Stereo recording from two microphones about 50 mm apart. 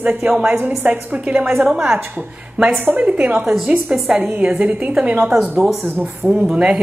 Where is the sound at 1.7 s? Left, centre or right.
Centre.